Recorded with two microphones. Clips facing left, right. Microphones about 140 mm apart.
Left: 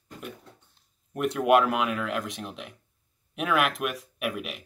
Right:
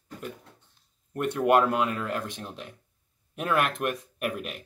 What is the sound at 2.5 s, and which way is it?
Speech, 70° left (ahead or behind).